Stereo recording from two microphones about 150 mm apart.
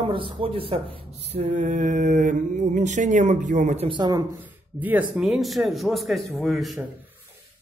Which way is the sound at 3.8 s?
30° right (ahead or behind).